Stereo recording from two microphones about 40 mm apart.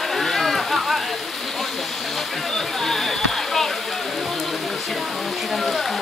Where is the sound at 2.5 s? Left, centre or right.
Centre.